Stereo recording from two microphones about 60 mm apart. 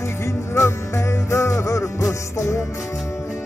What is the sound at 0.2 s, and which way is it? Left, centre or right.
Music, left.